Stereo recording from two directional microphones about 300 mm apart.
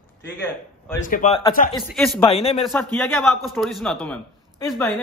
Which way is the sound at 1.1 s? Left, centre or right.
Left.